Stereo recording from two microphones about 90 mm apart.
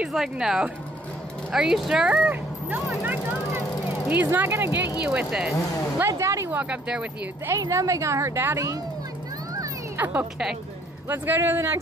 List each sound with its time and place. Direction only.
0.0 s speech: 5° right (ahead or behind); by 4.8 s 30° right (ahead or behind)
5.0 s speech: 10° right (ahead or behind)
5.9 s a woman's voice: 30° right (ahead or behind)
6.5 s speech: 15° right (ahead or behind)
7.5 s a woman's voice: 35° right (ahead or behind)
9.9 s speech: 20° right (ahead or behind)